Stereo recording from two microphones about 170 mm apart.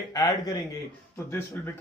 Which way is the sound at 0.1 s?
25° left (ahead or behind).